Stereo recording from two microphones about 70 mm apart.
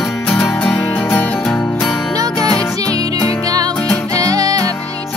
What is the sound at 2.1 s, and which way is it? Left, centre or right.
Music, right.